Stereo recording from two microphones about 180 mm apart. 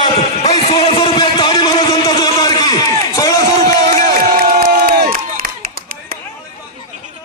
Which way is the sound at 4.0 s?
50° right (ahead or behind).